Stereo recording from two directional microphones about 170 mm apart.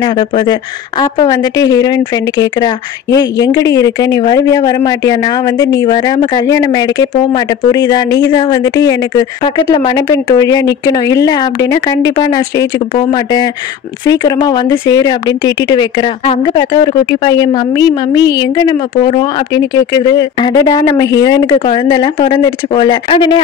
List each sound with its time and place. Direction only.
0.0 s speech: 25° left (ahead or behind)